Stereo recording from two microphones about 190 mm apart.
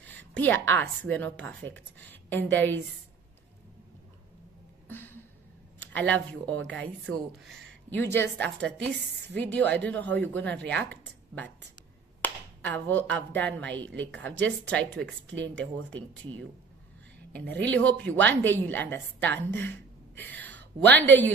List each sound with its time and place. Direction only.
0.0 s a woman's voice: 10° left (ahead or behind)
4.8 s a sound: 10° left (ahead or behind)
5.8 s speech: 10° left (ahead or behind)
13.8 s a woman's voice: 75° right (ahead or behind)
14.2 s speech: 10° left (ahead or behind)
20.2 s a sound: 10° left (ahead or behind)